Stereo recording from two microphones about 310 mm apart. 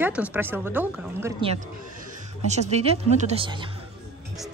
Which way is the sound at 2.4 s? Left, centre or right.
Right.